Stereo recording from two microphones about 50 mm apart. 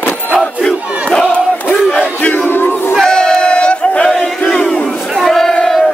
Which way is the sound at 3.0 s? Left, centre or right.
Centre.